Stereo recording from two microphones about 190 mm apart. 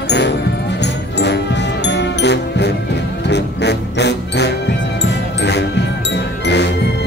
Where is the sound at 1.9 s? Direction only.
65° left (ahead or behind).